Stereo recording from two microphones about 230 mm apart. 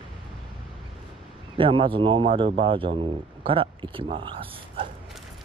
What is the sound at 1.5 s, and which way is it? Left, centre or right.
Speech, right.